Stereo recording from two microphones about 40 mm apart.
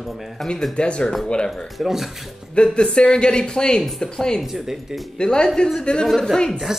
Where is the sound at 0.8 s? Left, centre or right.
Left.